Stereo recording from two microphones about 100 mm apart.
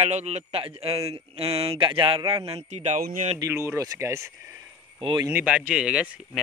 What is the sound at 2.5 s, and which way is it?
Speech, 90° right.